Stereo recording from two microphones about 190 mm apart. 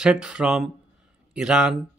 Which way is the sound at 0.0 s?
5° right (ahead or behind).